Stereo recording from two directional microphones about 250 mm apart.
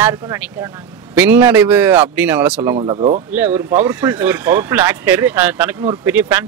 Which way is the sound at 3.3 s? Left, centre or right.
Centre.